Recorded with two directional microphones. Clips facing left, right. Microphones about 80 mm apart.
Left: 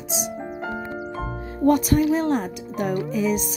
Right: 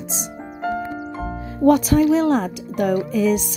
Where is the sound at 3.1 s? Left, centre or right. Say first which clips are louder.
Right 4 dB; right.